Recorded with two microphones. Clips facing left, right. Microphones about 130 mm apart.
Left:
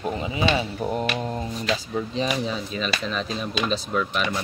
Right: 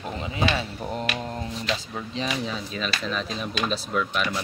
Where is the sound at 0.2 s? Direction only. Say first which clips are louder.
Left 1 dB; 10° left (ahead or behind).